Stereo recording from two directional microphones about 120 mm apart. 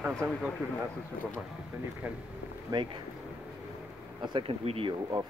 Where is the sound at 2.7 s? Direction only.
45° right (ahead or behind).